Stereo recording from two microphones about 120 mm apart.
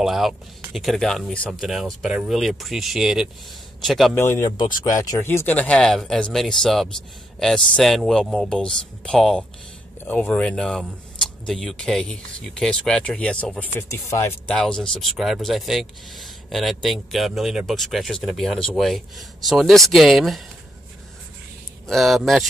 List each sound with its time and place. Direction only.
0.0 s speech: centre (ahead or behind)
4.1 s speech: 20° left (ahead or behind)
5.2 s speech: 20° left (ahead or behind)
14.5 s speech: 5° left (ahead or behind)
21.8 s speech: centre (ahead or behind)